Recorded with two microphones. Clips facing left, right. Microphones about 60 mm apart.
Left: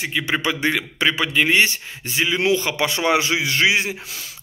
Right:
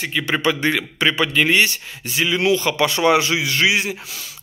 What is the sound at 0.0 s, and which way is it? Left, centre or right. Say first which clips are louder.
A man's voice: right 2 dB; centre.